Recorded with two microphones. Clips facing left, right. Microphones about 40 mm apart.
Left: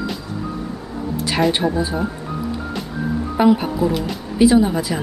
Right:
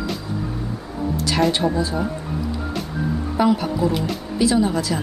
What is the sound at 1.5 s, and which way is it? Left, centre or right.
Speech, centre.